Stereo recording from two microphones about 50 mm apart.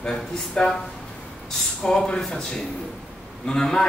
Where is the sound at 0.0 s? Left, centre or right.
Centre.